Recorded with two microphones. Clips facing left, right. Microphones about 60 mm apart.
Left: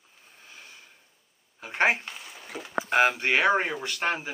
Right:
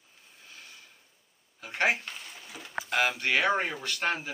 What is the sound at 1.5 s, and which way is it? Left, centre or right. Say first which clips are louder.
Speech: left 3 dB; left.